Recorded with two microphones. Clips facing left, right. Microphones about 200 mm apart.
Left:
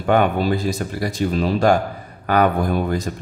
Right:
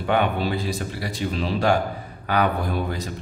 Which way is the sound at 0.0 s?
45° left (ahead or behind).